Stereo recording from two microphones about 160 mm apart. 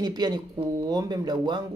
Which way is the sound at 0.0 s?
25° right (ahead or behind).